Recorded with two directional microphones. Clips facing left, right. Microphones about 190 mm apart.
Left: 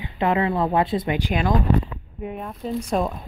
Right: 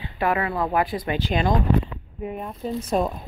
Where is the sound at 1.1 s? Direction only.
10° left (ahead or behind).